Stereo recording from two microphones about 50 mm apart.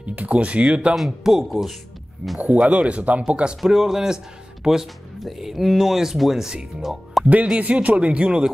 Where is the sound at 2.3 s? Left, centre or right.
Right.